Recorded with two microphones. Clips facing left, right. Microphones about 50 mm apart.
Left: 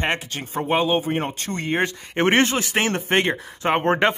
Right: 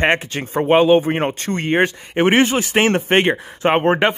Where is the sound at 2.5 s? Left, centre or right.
Right.